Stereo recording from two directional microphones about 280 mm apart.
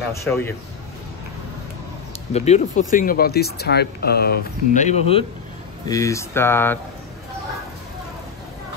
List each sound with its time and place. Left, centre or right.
0.2 s speech: centre
2.3 s speech: left
5.9 s speech: centre